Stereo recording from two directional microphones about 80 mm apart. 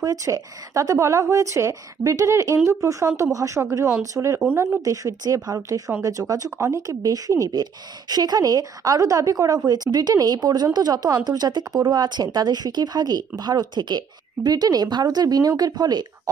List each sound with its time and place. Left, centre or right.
0.0 s speech: right